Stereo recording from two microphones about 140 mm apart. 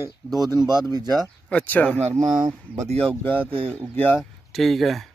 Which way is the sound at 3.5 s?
45° right (ahead or behind).